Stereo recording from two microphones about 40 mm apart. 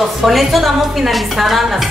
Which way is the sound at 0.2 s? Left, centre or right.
Centre.